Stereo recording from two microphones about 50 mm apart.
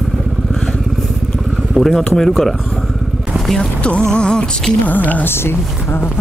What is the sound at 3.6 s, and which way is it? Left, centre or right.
Music, left.